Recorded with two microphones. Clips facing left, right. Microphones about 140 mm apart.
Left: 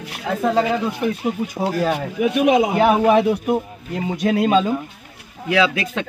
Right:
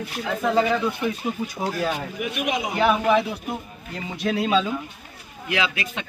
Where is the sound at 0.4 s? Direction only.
35° left (ahead or behind).